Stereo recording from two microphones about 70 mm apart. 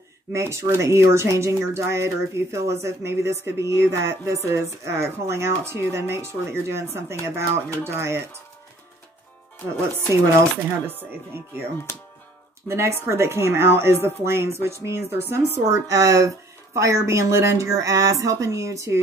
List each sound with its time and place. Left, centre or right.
0.3 s speech: right
12.6 s speech: right
15.7 s speech: right